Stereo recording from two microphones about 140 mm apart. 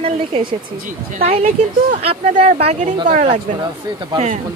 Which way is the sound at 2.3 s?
55° right (ahead or behind).